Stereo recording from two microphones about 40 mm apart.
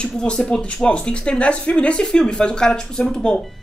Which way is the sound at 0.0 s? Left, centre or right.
Left.